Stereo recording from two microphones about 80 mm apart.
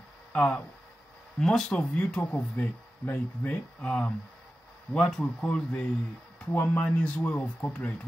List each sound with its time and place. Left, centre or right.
0.3 s speech: centre
6.5 s speech: left